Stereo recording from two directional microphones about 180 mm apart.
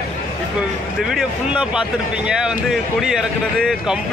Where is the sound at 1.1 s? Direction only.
5° right (ahead or behind).